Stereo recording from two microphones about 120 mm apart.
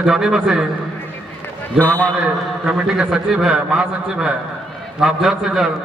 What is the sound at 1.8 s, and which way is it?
Speech, 10° left (ahead or behind).